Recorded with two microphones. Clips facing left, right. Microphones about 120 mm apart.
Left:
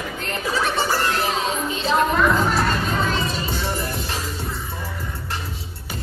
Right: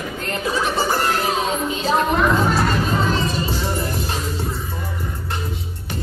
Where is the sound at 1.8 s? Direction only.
35° right (ahead or behind).